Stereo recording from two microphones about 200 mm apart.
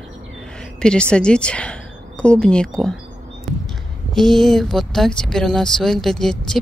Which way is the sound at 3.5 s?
Centre (ahead or behind).